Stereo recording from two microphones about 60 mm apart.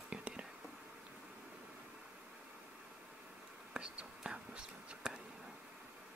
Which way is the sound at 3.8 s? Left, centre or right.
Centre.